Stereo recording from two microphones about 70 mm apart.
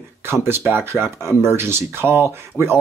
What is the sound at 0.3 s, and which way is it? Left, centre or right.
Speech, right.